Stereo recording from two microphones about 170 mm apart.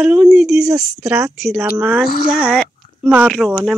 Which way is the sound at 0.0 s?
10° right (ahead or behind).